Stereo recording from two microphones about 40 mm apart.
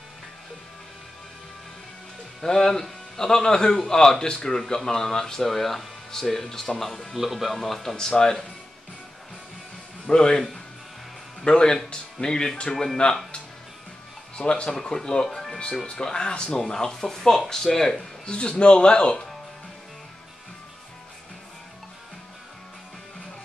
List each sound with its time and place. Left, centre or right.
2.4 s speech: centre
7.2 s speech: centre
10.0 s speech: centre
11.4 s speech: centre
14.3 s speech: left
15.9 s speech: centre
16.5 s speech: centre
18.3 s speech: left